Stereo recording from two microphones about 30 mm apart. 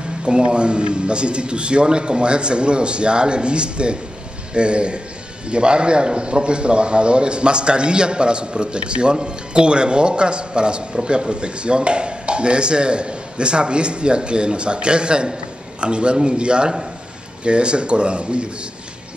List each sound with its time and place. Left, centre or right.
0.2 s speech: right